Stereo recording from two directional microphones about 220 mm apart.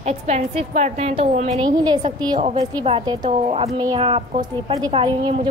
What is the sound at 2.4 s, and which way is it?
A woman's voice, 30° right (ahead or behind).